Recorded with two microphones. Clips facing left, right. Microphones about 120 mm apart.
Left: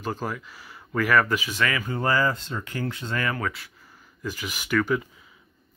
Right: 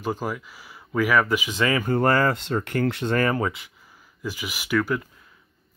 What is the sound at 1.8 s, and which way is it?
Speech, 55° right (ahead or behind).